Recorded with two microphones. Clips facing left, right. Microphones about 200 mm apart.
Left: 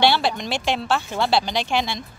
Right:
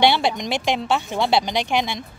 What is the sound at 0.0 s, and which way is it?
Speech, 20° right (ahead or behind).